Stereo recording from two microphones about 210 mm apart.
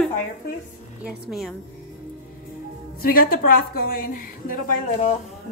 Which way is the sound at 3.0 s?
45° left (ahead or behind).